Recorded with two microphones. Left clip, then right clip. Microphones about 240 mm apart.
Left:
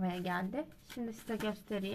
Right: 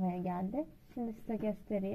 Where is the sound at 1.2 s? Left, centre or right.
Left.